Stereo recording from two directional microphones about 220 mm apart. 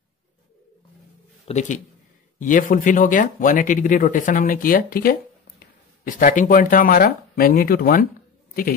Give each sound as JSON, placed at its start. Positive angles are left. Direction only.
{"t": 1.5, "sound": "speech", "side_deg": 35}